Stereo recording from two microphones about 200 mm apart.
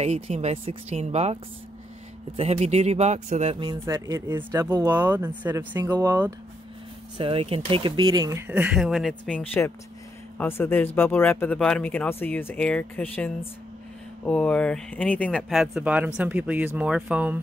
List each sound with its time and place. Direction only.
0.0 s speech: 35° right (ahead or behind)
3.8 s speech: 15° right (ahead or behind)
5.8 s speech: 20° right (ahead or behind)
7.2 s speech: 30° right (ahead or behind); by 17.4 s 5° right (ahead or behind)